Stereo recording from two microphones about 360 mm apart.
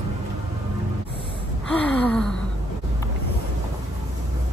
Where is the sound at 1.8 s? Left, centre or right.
Centre.